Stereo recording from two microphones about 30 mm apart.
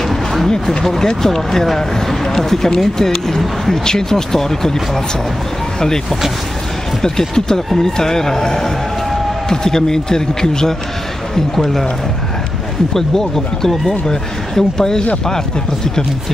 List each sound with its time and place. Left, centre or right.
0.1 s a sound: centre
0.8 s speech: centre
7.0 s a man's voice: centre
11.3 s speech: centre
12.9 s speech: centre
14.0 s a man's voice: left